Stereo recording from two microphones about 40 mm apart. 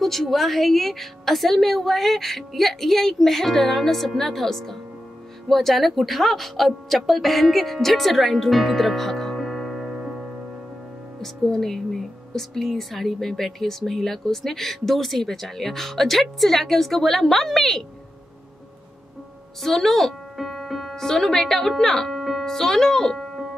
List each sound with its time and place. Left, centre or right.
0.0 s a woman's voice: centre
9.8 s music: right
11.1 s speech: centre
19.6 s music: centre
20.9 s speech: centre